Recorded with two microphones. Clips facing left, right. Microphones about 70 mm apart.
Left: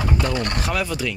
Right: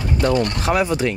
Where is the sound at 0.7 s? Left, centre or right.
Right.